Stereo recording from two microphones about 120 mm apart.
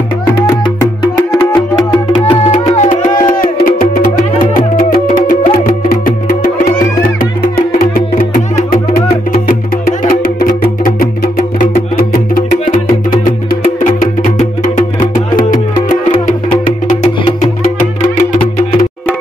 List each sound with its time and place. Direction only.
0.4 s music: 20° left (ahead or behind)
2.8 s music: 90° left
13.7 s music: 90° left